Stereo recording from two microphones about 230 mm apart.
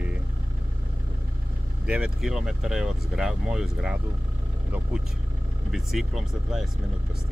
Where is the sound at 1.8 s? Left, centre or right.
Centre.